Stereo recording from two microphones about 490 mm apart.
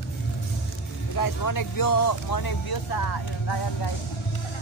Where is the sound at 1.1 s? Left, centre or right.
Left.